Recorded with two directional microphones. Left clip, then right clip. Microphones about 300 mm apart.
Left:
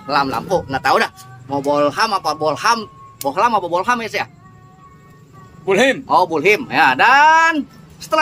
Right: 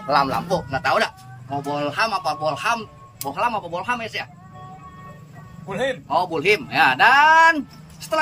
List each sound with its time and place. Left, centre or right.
0.0 s speech: centre
6.0 s speech: centre